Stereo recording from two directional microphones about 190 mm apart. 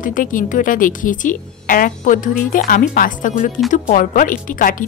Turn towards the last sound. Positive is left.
turn(degrees=45)  # may be behind; listen again after turning